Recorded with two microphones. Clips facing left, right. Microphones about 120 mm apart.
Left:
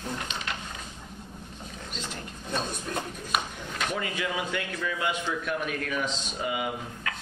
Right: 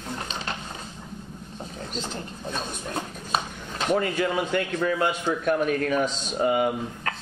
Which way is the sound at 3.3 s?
35° right (ahead or behind).